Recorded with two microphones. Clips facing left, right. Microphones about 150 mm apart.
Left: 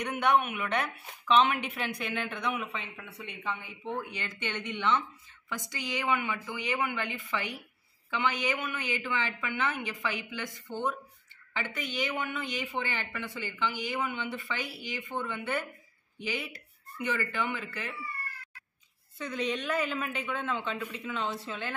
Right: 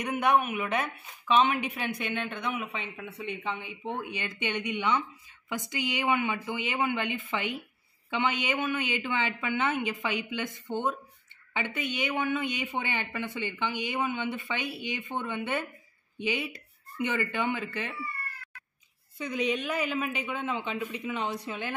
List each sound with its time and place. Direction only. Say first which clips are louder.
0.0 s speech: right 1 dB; 10° right (ahead or behind)
2.6 s a woman's voice: right 2 dB; 20° right (ahead or behind)
19.1 s a woman's voice: right 3 dB; 10° right (ahead or behind)